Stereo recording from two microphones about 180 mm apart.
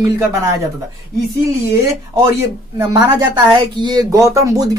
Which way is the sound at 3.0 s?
25° right (ahead or behind).